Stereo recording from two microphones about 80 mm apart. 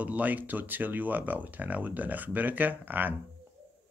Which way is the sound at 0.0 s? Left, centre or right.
Centre.